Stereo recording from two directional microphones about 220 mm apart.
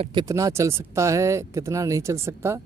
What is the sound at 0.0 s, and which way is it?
Speech, 20° right (ahead or behind).